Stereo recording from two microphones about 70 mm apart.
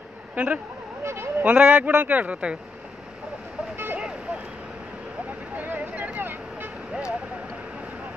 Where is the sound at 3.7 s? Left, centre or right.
Right.